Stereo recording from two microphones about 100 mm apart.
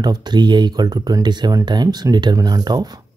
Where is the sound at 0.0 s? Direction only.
45° right (ahead or behind).